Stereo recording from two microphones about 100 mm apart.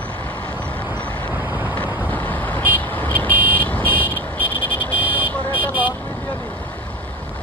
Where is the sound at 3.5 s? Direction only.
15° left (ahead or behind).